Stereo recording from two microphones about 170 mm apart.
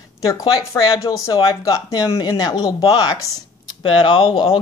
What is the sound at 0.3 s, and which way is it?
Speech, 20° left (ahead or behind).